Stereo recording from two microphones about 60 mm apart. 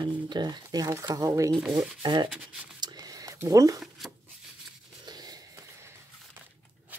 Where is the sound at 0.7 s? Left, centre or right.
Right.